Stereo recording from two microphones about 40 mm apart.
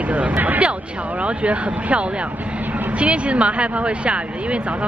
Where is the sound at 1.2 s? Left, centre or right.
Right.